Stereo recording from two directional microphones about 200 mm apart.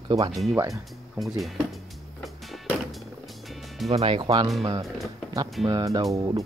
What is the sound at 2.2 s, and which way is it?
Music, centre (ahead or behind).